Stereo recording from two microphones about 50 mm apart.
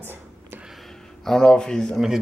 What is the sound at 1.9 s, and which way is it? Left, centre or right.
Speech, centre.